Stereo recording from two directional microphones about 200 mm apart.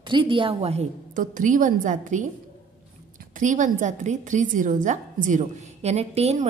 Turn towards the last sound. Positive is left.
turn(degrees=-35)  # may be behind; listen again after turning